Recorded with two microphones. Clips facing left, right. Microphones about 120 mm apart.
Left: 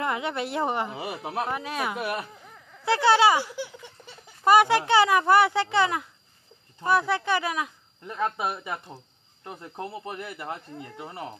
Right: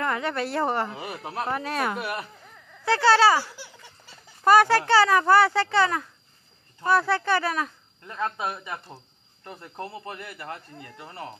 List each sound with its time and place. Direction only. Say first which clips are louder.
0.0 s speech: right 1 dB; 15° left (ahead or behind)
2.8 s speech: right 1 dB; 20° left (ahead or behind)